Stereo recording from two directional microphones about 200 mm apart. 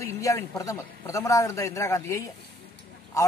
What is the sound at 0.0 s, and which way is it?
A man's voice, 15° left (ahead or behind).